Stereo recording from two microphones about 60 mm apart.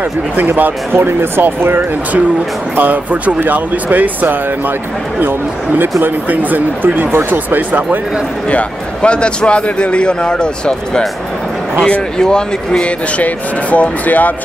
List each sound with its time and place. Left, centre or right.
0.4 s speech: right
8.5 s a man's voice: left
13.2 s speech: left